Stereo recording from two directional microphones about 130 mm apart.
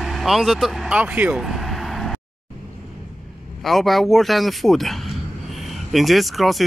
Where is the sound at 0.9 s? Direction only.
10° right (ahead or behind).